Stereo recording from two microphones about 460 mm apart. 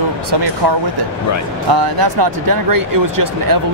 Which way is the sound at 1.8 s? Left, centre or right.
Right.